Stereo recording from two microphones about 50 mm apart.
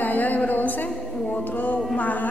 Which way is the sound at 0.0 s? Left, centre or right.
Left.